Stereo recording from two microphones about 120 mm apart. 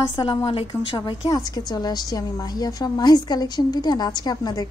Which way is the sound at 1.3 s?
35° left (ahead or behind).